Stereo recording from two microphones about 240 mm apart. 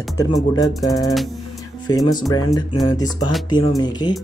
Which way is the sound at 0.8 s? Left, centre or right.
Centre.